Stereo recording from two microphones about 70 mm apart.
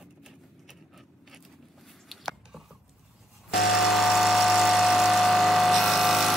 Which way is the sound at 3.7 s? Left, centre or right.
Centre.